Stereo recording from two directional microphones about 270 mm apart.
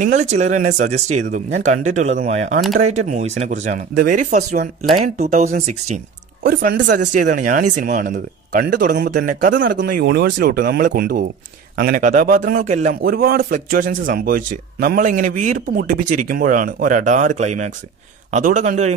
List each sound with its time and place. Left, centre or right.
0.0 s a man's voice: right